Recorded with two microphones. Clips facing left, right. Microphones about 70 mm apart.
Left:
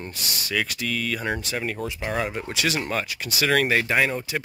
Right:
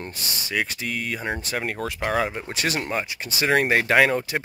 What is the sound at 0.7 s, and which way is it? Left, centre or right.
Speech, right.